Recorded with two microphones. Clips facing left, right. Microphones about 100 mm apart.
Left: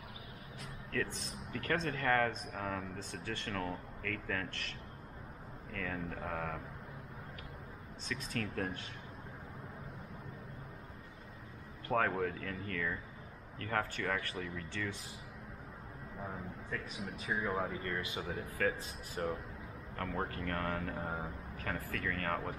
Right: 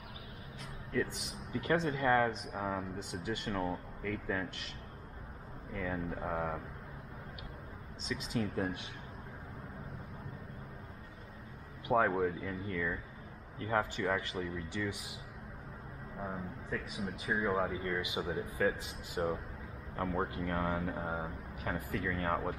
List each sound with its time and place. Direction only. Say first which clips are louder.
0.9 s speech: right 3 dB; 15° right (ahead or behind)
8.0 s speech: right 4 dB; 15° right (ahead or behind)
11.9 s speech: right 3 dB; 15° right (ahead or behind)
16.2 s speech: right 3 dB; 15° right (ahead or behind)